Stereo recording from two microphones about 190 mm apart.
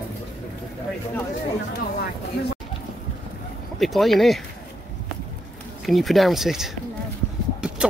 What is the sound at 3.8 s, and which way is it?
Speech, centre (ahead or behind).